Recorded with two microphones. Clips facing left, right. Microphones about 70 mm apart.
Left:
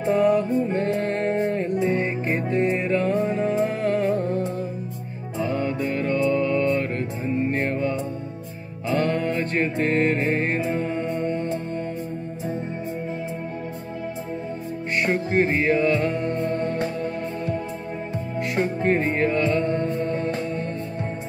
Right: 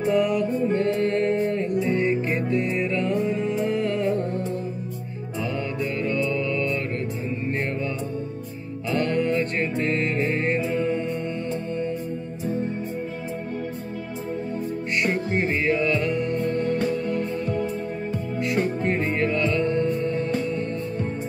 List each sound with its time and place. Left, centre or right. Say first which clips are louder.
0.0 s music: left 2 dB; left
8.9 s music: even; left
15.0 s music: left 4 dB; left
18.6 s music: left 4 dB; left